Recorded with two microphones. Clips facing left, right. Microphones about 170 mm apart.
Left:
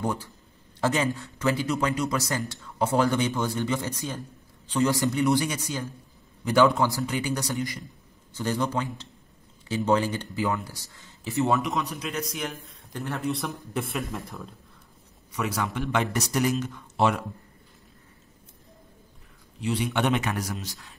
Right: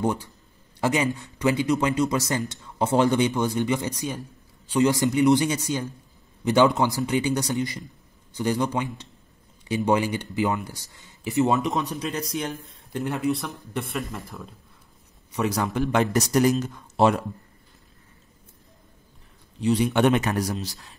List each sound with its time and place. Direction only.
0.0 s speech: 20° right (ahead or behind)
11.8 s speech: 35° right (ahead or behind)
12.9 s speech: 20° right (ahead or behind)
13.2 s speech: centre (ahead or behind)
15.3 s speech: 35° right (ahead or behind)
19.6 s speech: 40° right (ahead or behind)